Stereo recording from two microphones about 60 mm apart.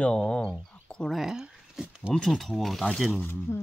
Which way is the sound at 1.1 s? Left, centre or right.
Centre.